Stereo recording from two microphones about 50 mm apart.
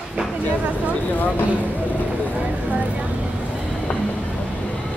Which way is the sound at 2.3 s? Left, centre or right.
Right.